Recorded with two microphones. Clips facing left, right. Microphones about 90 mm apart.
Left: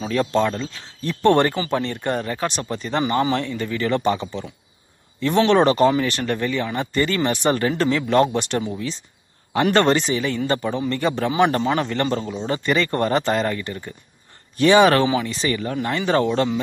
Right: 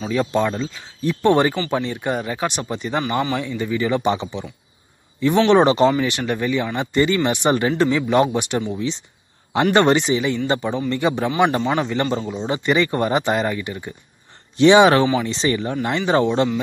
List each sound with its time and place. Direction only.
0.0 s speech: 5° right (ahead or behind)
5.5 s speech: 20° right (ahead or behind)